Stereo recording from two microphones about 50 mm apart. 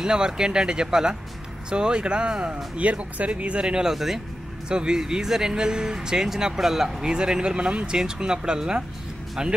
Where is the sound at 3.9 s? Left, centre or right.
Centre.